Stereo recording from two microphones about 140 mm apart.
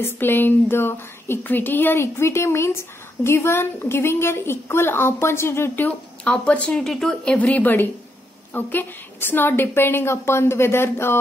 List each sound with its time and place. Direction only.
0.0 s a woman's voice: 15° left (ahead or behind)